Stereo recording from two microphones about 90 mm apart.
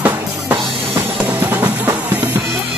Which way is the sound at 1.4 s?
25° right (ahead or behind).